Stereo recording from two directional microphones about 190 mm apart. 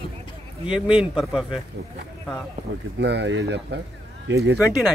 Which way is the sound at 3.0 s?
65° right (ahead or behind).